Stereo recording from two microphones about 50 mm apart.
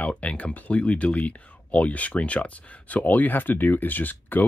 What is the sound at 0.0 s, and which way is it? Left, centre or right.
Speech, left.